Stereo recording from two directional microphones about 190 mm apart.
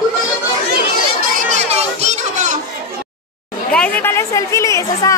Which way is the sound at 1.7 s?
35° right (ahead or behind).